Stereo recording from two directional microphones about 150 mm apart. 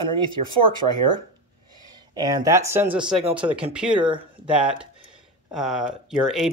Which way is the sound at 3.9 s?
35° right (ahead or behind).